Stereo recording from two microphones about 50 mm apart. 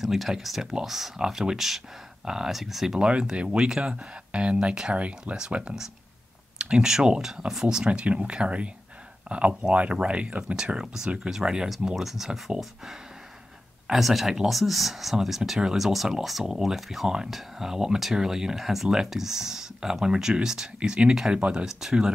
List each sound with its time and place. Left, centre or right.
0.0 s speech: centre
3.0 s speech: right; by 12.9 s centre
13.9 s speech: centre